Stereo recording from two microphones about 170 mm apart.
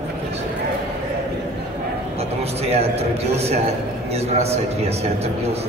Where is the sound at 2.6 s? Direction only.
35° right (ahead or behind).